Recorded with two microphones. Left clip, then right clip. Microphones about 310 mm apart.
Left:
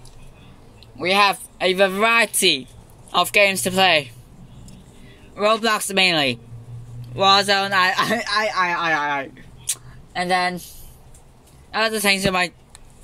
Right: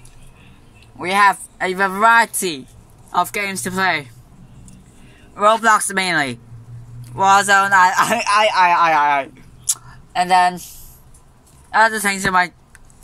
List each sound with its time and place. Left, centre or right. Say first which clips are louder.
0.9 s speech: right 3 dB; centre
5.3 s speech: right 5 dB; centre
8.5 s speech: right 7 dB; centre
9.7 s a sound: right 5 dB; centre
11.7 s speech: right 4 dB; centre